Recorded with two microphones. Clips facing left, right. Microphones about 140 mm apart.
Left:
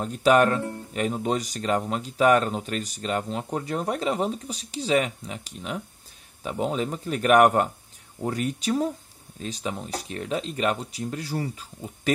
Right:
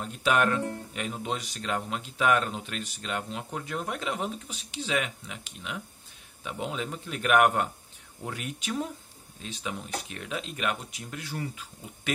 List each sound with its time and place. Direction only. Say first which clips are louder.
0.0 s speech: left 7 dB; 40° left (ahead or behind)